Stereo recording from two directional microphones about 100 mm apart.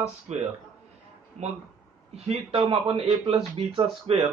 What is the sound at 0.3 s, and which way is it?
A man's voice, 90° right.